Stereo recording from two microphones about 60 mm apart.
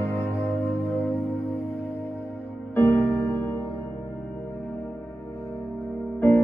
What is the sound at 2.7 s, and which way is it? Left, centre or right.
Music, left.